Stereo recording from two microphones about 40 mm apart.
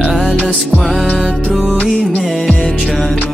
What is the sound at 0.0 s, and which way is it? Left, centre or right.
Music, centre.